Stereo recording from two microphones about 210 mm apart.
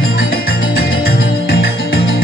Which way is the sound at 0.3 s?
45° left (ahead or behind).